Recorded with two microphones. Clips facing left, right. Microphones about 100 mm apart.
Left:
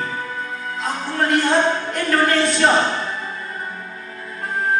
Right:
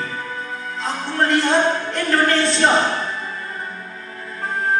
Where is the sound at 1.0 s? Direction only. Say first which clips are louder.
Even; 10° left (ahead or behind).